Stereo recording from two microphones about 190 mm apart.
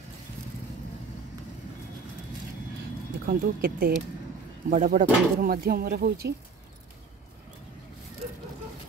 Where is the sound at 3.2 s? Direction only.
50° right (ahead or behind).